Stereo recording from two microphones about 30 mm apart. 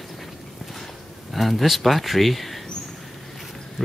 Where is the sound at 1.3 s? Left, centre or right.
Centre.